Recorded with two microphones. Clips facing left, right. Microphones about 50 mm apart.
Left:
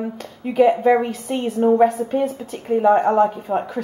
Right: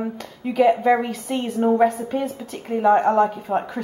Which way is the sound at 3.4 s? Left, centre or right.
Centre.